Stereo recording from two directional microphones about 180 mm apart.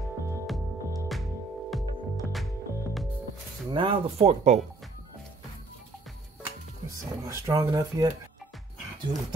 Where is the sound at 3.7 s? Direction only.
30° right (ahead or behind).